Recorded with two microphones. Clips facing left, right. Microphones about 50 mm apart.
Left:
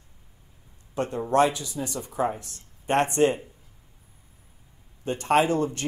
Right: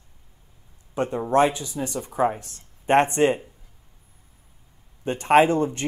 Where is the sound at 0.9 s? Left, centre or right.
Centre.